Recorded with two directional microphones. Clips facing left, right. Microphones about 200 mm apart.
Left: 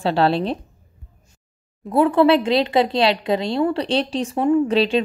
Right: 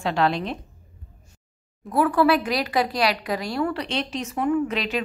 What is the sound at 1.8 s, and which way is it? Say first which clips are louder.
A woman's voice: left 5 dB; 25° left (ahead or behind).